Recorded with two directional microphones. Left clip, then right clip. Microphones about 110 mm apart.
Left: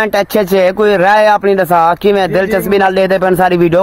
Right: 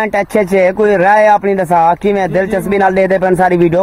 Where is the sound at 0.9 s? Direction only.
Centre (ahead or behind).